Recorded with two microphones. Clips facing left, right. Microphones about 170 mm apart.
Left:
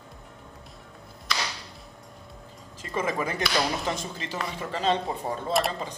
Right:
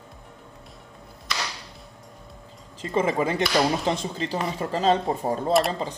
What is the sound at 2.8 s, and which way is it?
A man's voice, 30° right (ahead or behind).